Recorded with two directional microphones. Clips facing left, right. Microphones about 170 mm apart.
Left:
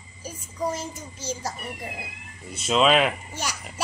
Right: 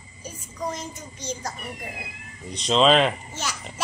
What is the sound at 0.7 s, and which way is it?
A child's voice, 5° left (ahead or behind).